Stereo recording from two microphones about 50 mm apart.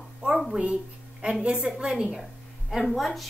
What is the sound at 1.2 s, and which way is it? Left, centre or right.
Speech, right.